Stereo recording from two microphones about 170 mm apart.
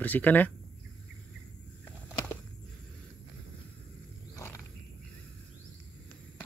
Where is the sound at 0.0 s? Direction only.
10° left (ahead or behind).